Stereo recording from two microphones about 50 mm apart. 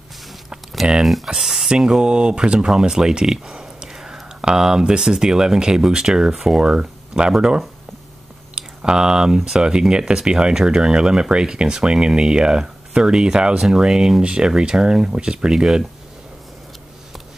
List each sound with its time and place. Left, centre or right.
1.0 s speech: centre